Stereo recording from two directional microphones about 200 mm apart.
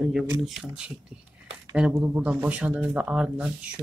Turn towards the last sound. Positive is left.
turn(degrees=-5)  # may be behind; listen again after turning